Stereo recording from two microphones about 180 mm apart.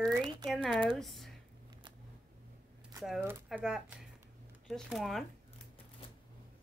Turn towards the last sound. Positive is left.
turn(degrees=0)  # may be behind; listen again after turning